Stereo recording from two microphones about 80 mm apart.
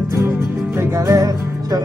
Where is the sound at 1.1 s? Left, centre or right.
Right.